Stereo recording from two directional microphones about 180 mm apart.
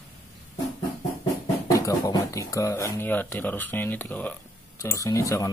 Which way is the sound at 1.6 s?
20° left (ahead or behind).